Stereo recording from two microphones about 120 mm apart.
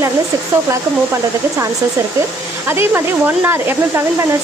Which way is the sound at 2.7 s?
20° right (ahead or behind).